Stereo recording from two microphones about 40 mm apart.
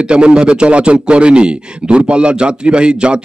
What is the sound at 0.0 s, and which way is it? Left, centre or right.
A man's voice, right.